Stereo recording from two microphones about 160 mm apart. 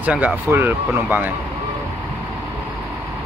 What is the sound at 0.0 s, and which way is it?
Speech, 10° right (ahead or behind).